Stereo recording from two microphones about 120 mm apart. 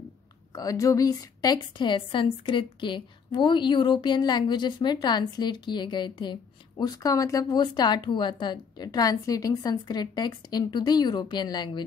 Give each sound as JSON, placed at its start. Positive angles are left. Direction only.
{"t": 0.6, "sound": "speech", "side_deg": 30}